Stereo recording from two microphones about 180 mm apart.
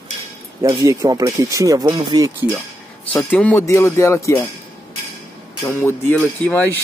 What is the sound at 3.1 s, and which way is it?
Speech, 10° left (ahead or behind).